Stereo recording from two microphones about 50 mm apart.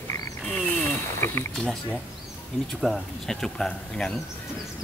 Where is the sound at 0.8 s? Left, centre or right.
Left.